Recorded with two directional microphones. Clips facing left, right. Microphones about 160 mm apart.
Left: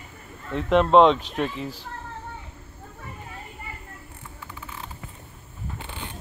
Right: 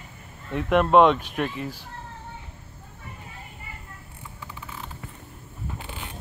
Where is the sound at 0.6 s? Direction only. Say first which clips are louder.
Left 1 dB; 10° right (ahead or behind).